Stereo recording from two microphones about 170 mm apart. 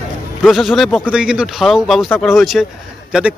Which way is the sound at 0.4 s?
Centre (ahead or behind).